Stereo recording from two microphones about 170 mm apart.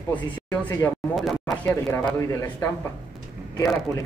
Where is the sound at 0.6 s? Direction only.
10° left (ahead or behind).